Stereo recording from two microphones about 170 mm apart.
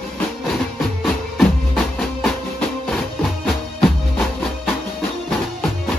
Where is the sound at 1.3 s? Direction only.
Centre (ahead or behind).